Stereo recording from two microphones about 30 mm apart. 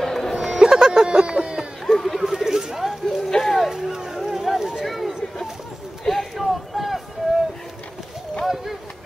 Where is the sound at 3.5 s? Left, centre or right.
Centre.